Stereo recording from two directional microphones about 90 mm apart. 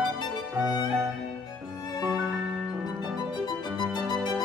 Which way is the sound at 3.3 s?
55° left (ahead or behind).